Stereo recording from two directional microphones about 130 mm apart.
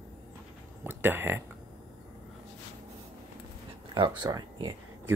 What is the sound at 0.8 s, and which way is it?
Speech, 15° right (ahead or behind).